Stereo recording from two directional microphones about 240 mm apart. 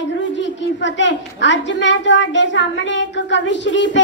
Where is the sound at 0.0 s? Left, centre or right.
Left.